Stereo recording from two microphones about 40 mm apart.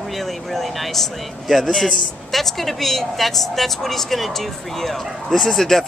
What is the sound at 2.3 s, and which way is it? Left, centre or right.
A woman's voice, centre.